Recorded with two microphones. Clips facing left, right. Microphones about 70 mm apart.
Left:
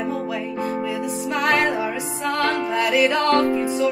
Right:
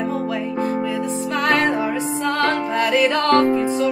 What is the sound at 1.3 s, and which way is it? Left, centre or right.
Music, centre.